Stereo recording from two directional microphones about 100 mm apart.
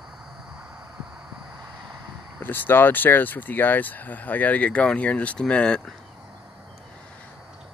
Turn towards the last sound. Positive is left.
turn(degrees=10)  # may be behind; listen again after turning